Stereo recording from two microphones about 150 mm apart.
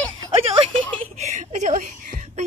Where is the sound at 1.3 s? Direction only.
55° right (ahead or behind).